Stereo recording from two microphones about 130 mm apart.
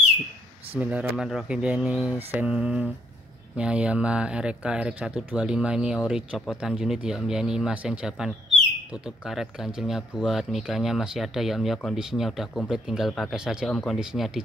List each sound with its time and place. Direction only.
0.7 s speech: 10° right (ahead or behind)